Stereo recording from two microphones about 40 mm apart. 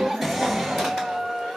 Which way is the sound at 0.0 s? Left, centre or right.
Centre.